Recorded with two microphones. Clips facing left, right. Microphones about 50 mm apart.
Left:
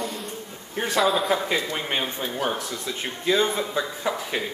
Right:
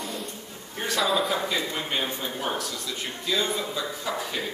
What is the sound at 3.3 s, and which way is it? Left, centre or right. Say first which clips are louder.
Speech: left 5 dB; left.